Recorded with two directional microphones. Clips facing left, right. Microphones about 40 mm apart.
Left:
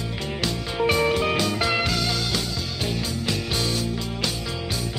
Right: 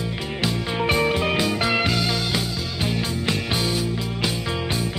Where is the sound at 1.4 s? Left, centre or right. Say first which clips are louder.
Right 2 dB; centre.